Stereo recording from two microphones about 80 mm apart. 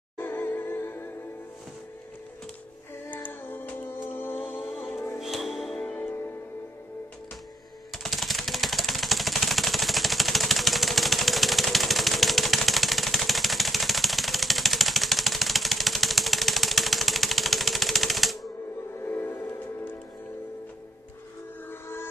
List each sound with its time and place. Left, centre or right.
0.2 s music: left
3.1 s music: left
5.2 s music: centre
5.9 s music: left
7.9 s a sound: centre
18.9 s music: left
21.6 s train: left